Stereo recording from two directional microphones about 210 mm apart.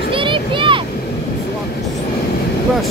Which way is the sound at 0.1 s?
25° right (ahead or behind).